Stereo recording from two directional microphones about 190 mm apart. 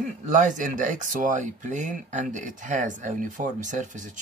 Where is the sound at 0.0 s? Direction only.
40° right (ahead or behind).